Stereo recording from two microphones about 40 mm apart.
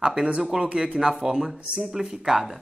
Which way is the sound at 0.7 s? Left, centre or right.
Right.